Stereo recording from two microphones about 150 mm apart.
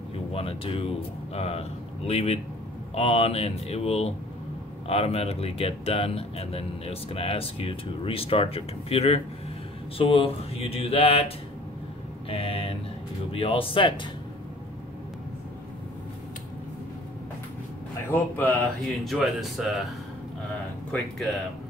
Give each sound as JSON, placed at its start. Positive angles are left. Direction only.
{"t": 0.3, "sound": "speech", "side_deg": 40}
{"t": 12.3, "sound": "mantra", "side_deg": 40}
{"t": 13.3, "sound": "speech", "side_deg": 40}
{"t": 18.1, "sound": "speech", "side_deg": 10}
{"t": 18.9, "sound": "speech", "side_deg": 0}
{"t": 20.9, "sound": "speech", "side_deg": 0}